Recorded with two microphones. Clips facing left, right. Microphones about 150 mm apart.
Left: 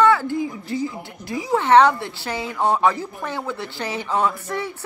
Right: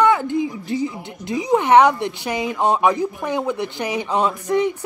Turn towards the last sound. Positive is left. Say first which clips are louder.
# right 5 dB
turn(degrees=-15)  # may be behind; listen again after turning